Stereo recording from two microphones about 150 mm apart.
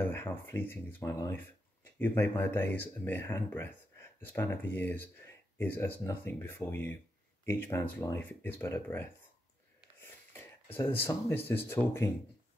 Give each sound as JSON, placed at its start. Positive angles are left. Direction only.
{"t": 0.0, "sound": "speech", "side_deg": 15}